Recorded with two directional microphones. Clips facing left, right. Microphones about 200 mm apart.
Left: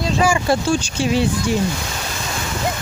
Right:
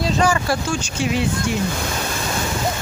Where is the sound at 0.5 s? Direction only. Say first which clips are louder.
Left 4 dB; 30° left (ahead or behind).